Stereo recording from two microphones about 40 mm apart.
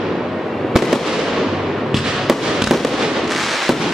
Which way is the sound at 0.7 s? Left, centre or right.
Centre.